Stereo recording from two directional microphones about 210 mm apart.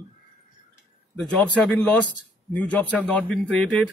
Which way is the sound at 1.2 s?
5° left (ahead or behind).